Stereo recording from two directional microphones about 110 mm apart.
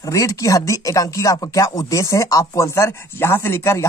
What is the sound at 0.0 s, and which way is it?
Speech, 30° left (ahead or behind).